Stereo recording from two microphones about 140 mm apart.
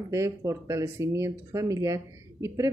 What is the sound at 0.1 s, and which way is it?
Speech, 25° right (ahead or behind).